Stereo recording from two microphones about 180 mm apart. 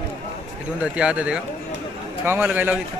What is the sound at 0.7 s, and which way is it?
A man's voice, 5° right (ahead or behind).